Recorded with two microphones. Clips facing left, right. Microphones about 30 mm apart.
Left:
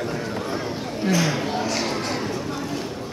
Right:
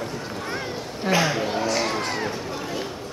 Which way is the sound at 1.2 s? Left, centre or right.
Centre.